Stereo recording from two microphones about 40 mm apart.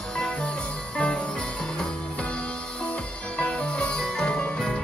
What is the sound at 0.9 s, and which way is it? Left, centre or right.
Music, left.